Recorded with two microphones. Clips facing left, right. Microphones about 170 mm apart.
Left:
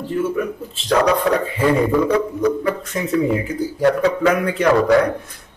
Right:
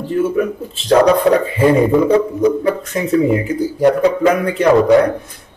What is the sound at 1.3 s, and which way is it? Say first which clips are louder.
Speech: right 6 dB; 25° right (ahead or behind).